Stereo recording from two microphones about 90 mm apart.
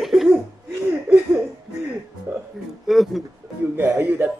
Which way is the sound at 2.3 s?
30° right (ahead or behind).